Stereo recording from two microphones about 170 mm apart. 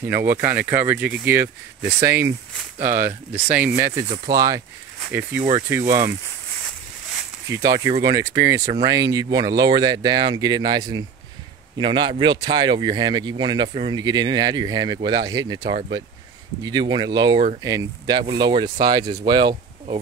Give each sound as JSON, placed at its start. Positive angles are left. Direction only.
{"t": 0.4, "sound": "speech", "side_deg": -10}
{"t": 7.4, "sound": "speech", "side_deg": -20}